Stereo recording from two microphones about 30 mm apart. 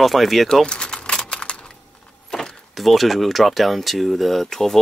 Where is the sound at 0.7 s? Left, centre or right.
Left.